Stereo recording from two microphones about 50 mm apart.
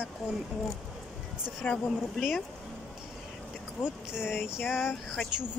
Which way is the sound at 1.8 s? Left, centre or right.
Centre.